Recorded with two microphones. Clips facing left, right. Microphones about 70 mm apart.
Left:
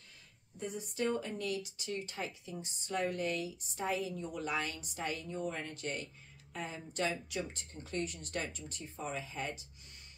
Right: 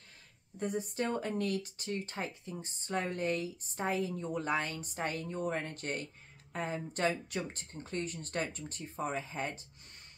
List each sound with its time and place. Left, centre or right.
0.6 s a woman's voice: right